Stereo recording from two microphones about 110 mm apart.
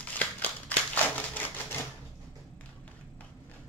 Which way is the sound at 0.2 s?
15° left (ahead or behind).